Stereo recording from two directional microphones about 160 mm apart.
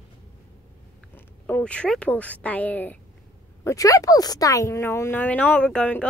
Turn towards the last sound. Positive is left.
turn(degrees=5)  # may be behind; listen again after turning